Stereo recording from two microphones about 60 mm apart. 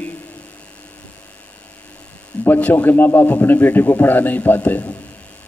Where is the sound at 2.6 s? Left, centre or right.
Left.